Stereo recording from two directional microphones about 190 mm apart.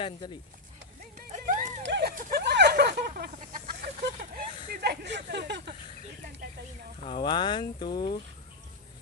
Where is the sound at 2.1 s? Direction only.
45° right (ahead or behind).